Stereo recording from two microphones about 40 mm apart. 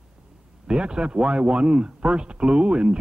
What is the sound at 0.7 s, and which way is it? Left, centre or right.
Speech, right.